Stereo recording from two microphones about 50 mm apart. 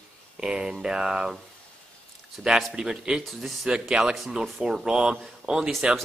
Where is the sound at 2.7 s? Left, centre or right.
Centre.